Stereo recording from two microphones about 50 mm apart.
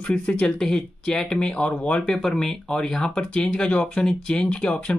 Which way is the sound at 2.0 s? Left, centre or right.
Centre.